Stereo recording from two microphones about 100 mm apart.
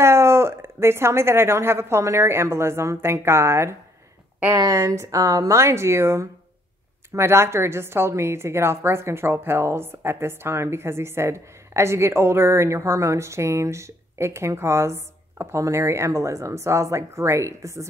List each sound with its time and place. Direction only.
0.0 s a woman's voice: 25° right (ahead or behind)